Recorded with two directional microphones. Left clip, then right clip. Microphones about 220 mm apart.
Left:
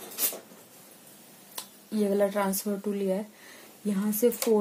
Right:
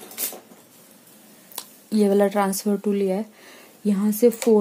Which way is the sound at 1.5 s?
45° right (ahead or behind).